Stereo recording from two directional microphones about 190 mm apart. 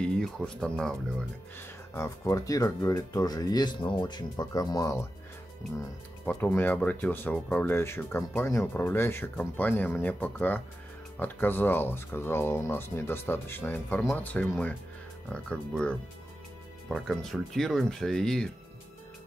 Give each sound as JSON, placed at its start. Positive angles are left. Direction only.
{"t": 0.0, "sound": "speech", "side_deg": 5}
{"t": 1.6, "sound": "speech", "side_deg": 15}
{"t": 6.2, "sound": "speech", "side_deg": 10}